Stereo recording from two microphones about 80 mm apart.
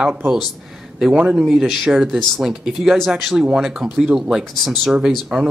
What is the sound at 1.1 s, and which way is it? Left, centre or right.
Speech, centre.